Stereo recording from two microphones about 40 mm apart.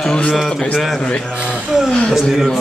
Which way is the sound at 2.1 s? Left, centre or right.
Centre.